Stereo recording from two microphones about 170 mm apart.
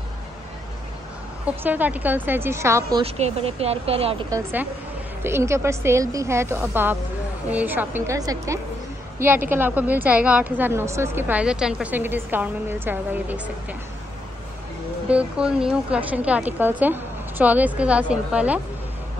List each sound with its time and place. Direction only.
1.4 s a woman's voice: 10° right (ahead or behind)
3.0 s speech: 35° right (ahead or behind)
4.3 s a woman's voice: 10° right (ahead or behind)
15.0 s a woman's voice: 5° right (ahead or behind)